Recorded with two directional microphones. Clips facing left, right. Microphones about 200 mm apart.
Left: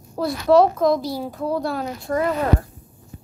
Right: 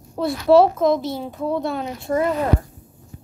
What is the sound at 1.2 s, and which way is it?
Speech, centre (ahead or behind).